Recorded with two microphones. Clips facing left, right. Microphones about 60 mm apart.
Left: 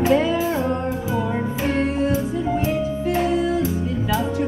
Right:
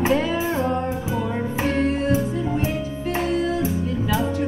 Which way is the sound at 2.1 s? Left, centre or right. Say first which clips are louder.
Left 1 dB; right.